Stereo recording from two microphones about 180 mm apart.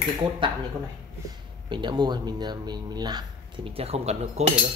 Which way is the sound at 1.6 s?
25° right (ahead or behind).